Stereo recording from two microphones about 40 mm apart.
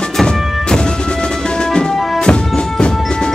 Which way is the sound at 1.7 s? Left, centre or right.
Left.